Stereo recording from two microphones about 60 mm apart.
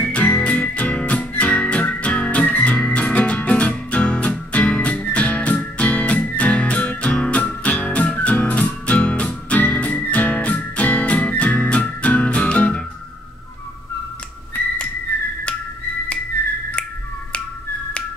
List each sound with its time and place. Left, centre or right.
0.0 s music: left